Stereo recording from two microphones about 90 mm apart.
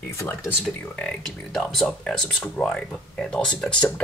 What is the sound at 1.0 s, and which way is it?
Speech, 5° left (ahead or behind).